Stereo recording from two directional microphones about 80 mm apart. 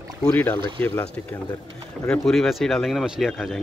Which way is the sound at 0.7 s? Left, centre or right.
Left.